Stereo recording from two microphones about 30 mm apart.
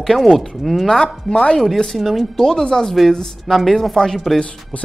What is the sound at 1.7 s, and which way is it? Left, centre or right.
Speech, centre.